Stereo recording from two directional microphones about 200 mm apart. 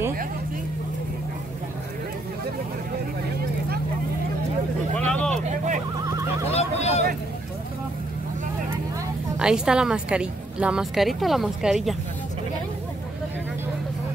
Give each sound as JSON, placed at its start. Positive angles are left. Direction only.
{"t": 4.9, "sound": "vehicle", "side_deg": 5}
{"t": 6.5, "sound": "a sound", "side_deg": 35}
{"t": 9.4, "sound": "a woman's voice", "side_deg": -5}